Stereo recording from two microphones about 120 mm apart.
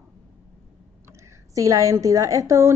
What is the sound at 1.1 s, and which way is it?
A woman's voice, 25° right (ahead or behind).